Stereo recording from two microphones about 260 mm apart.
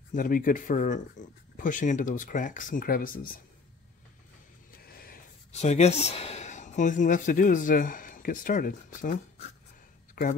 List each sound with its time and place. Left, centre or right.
0.1 s speech: left
4.7 s speech: left